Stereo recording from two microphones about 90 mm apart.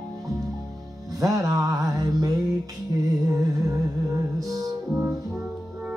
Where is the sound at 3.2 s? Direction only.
40° right (ahead or behind).